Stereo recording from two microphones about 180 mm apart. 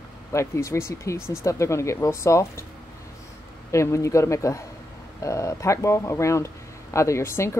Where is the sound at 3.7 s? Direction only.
15° left (ahead or behind).